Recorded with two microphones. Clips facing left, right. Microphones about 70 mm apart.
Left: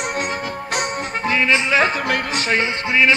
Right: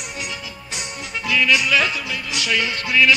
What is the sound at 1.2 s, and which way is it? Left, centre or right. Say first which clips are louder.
Music: even; left.